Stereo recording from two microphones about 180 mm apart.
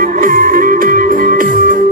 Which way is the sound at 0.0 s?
50° right (ahead or behind).